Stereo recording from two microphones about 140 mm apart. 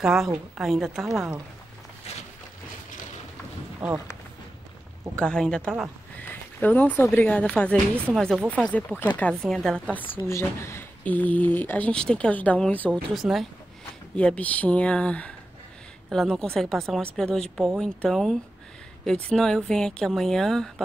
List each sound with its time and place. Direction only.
0.0 s speech: 5° right (ahead or behind)
2.1 s a sound: 45° left (ahead or behind)
3.8 s speech: 5° right (ahead or behind)
5.1 s speech: 5° left (ahead or behind)
6.2 s a sound: 10° left (ahead or behind)
7.2 s speech: 10° left (ahead or behind)
10.1 s speech: 15° left (ahead or behind)